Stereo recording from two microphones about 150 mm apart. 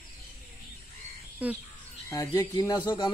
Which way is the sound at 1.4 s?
10° right (ahead or behind).